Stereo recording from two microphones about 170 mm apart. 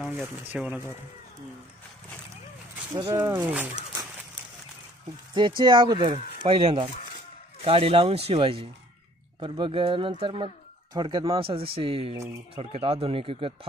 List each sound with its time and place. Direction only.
0.5 s speech: 10° right (ahead or behind)
2.9 s speech: 15° right (ahead or behind)
5.6 s speech: 30° right (ahead or behind)